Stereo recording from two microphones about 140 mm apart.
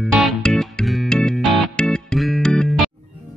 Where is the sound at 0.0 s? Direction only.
5° left (ahead or behind).